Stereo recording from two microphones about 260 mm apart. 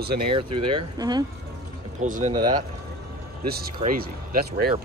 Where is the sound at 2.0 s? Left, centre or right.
Right.